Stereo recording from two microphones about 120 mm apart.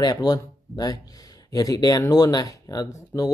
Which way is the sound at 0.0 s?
35° left (ahead or behind).